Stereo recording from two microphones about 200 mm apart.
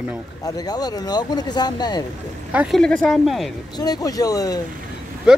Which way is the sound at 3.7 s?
20° left (ahead or behind).